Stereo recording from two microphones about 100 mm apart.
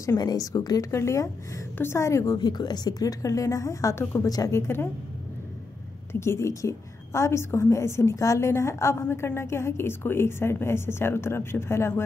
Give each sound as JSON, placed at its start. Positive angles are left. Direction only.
{"t": 0.2, "sound": "a woman's voice", "side_deg": 40}
{"t": 2.3, "sound": "a woman's voice", "side_deg": 45}
{"t": 4.0, "sound": "a woman's voice", "side_deg": 20}
{"t": 4.3, "sound": "a woman's voice", "side_deg": 40}
{"t": 4.6, "sound": "a woman's voice", "side_deg": 25}
{"t": 6.1, "sound": "a woman's voice", "side_deg": 25}